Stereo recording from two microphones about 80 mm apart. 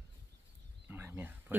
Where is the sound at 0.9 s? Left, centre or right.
Right.